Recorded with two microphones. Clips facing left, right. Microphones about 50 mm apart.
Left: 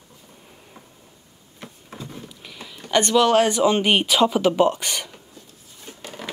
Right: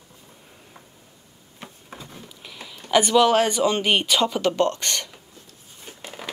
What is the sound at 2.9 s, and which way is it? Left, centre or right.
Speech, centre.